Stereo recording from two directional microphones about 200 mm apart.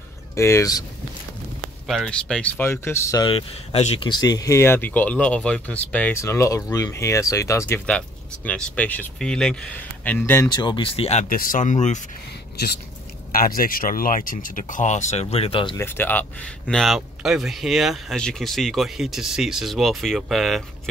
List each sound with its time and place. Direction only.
0.4 s speech: 15° left (ahead or behind)
1.9 s speech: centre (ahead or behind)
3.3 s speech: 30° left (ahead or behind); by 10.5 s 10° left (ahead or behind)
10.5 s speech: 20° left (ahead or behind); by 12.0 s 35° left (ahead or behind)
13.3 s speech: 45° left (ahead or behind); by 15.8 s 25° left (ahead or behind)
15.8 s speech: 10° left (ahead or behind)